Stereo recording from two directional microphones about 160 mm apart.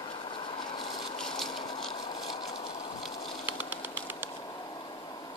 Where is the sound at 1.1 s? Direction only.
5° left (ahead or behind).